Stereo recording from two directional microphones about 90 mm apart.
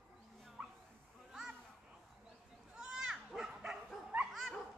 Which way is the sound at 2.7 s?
10° right (ahead or behind).